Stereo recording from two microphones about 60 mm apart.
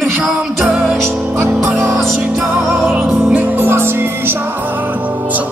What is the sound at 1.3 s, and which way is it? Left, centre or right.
Speech, right.